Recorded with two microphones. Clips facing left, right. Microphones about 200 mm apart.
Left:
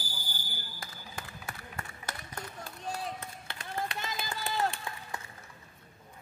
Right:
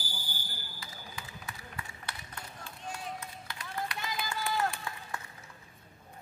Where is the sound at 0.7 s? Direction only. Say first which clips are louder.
Left 2 dB; 50° left (ahead or behind); by 5.2 s 25° left (ahead or behind).